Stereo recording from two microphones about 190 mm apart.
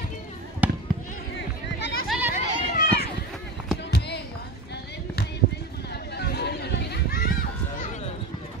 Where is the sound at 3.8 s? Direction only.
60° left (ahead or behind).